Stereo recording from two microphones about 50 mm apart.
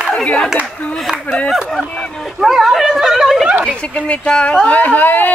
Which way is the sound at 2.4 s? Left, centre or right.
Centre.